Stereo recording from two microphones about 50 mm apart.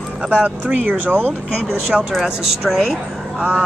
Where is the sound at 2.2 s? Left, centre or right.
Centre.